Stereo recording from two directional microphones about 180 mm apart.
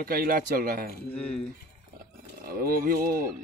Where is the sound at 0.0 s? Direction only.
55° right (ahead or behind).